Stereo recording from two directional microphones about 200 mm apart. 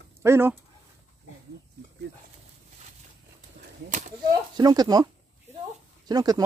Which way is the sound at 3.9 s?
35° right (ahead or behind).